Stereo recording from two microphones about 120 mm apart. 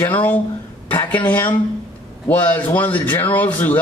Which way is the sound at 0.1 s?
15° left (ahead or behind).